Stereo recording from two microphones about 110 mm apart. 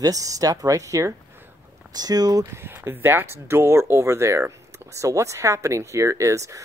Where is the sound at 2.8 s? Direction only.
20° right (ahead or behind).